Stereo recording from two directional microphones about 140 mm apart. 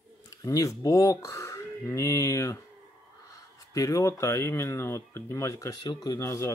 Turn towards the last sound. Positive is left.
turn(degrees=20)  # may be behind; listen again after turning